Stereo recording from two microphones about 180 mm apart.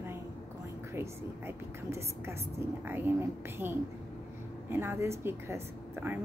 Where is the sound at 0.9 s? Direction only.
15° right (ahead or behind).